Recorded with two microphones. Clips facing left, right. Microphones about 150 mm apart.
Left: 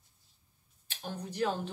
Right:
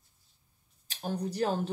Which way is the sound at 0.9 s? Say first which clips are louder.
Right 7 dB; 40° right (ahead or behind).